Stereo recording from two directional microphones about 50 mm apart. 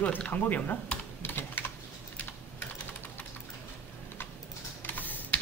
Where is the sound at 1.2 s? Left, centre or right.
Left.